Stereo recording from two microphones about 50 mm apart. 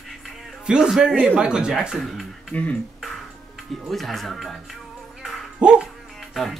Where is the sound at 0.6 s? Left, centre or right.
Centre.